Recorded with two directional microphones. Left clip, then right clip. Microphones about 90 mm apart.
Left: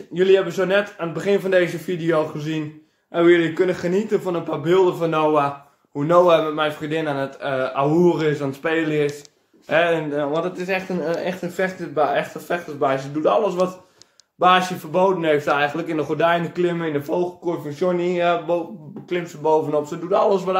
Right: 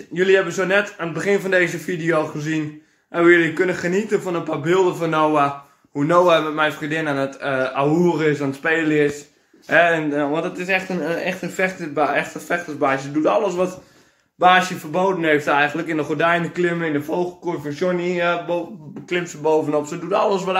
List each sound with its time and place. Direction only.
0.1 s speech: 10° left (ahead or behind)
6.8 s speech: centre (ahead or behind)
7.8 s a man's voice: 20° left (ahead or behind); by 18.6 s 35° left (ahead or behind)
19.0 s speech: 15° left (ahead or behind)